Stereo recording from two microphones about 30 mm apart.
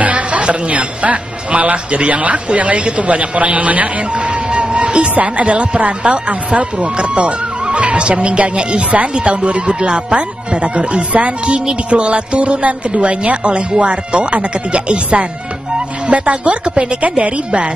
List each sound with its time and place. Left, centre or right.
0.0 s speech: right
4.1 s music: right
5.4 s speech: right
16.1 s a woman's voice: right